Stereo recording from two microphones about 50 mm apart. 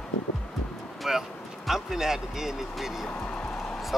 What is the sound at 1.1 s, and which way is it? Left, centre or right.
Speech, centre.